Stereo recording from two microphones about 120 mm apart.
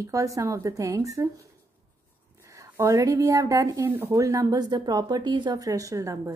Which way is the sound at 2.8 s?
25° right (ahead or behind).